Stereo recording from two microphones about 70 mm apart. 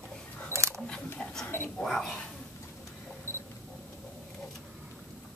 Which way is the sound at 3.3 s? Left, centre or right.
Right.